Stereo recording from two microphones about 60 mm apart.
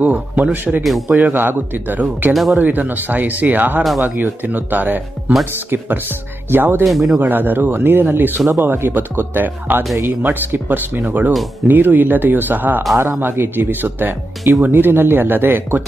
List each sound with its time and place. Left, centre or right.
0.0 s speech: right
0.8 s speech: centre
1.1 s speech: right
2.3 s speech: centre
2.6 s speech: right
6.8 s speech: centre
7.2 s speech: right